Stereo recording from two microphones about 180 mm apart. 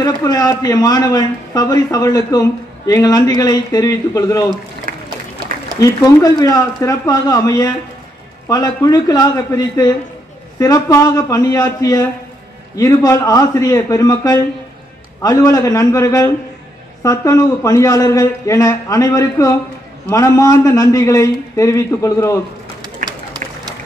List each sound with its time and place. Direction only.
0.0 s a man's voice: 20° left (ahead or behind)
4.9 s a sound: 50° right (ahead or behind)
5.8 s a man's voice: 20° left (ahead or behind)
23.0 s run: 25° right (ahead or behind)